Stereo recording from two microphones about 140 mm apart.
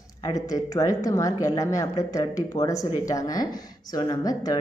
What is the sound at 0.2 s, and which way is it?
Speech, 25° left (ahead or behind).